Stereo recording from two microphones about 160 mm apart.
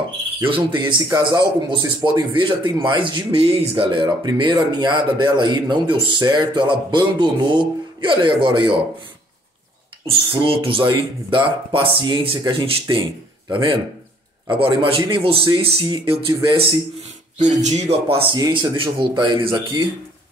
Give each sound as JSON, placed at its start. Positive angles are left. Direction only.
{"t": 0.5, "sound": "a man's voice", "side_deg": -30}
{"t": 10.3, "sound": "a man's voice", "side_deg": -35}
{"t": 17.4, "sound": "speech", "side_deg": -50}
{"t": 18.3, "sound": "speech", "side_deg": -30}